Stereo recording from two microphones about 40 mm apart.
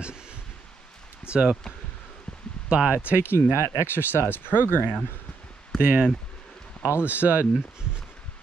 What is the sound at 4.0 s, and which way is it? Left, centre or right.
Speech, left.